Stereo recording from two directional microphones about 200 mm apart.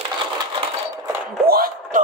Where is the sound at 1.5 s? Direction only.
45° right (ahead or behind).